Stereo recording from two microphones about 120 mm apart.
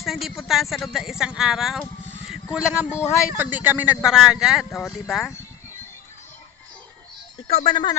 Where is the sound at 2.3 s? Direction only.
5° right (ahead or behind).